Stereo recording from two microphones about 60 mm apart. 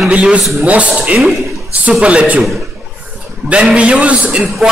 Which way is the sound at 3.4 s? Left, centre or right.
Centre.